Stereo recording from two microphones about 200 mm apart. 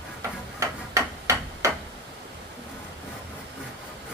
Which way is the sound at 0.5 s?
15° right (ahead or behind).